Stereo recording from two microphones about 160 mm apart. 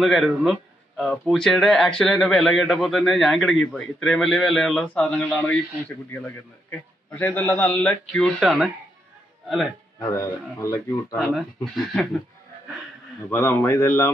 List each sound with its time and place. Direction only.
0.0 s a man's voice: centre (ahead or behind)
7.1 s a man's voice: 10° left (ahead or behind)
9.9 s a man's voice: 20° left (ahead or behind)
11.1 s a man's voice: centre (ahead or behind)
13.3 s a man's voice: 15° left (ahead or behind)